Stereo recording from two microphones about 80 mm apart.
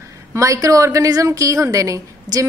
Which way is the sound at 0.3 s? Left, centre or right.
Right.